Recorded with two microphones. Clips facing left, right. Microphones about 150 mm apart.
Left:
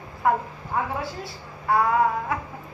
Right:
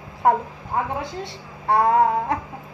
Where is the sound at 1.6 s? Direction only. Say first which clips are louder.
Right 3 dB; 30° right (ahead or behind).